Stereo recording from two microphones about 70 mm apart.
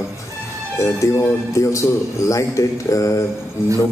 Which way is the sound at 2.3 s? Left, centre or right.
Left.